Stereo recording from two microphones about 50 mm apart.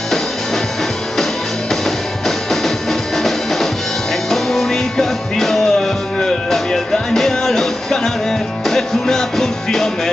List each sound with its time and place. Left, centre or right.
2.2 s music: centre